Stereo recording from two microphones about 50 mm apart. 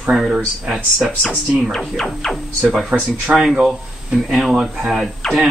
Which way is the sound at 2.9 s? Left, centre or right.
Right.